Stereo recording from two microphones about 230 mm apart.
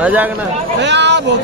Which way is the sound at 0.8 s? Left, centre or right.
Right.